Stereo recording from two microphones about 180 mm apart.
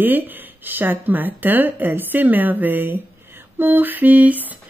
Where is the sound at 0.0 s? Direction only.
10° right (ahead or behind).